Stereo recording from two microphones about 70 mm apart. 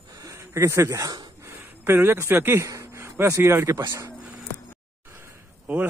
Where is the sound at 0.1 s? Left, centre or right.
Right.